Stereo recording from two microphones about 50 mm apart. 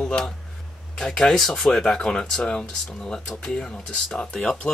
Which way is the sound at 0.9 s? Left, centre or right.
Centre.